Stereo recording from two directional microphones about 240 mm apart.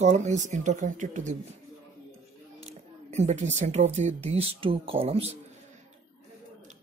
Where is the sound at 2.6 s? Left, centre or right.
Right.